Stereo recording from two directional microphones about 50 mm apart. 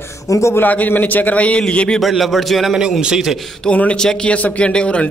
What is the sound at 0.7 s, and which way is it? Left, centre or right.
A man's voice, left.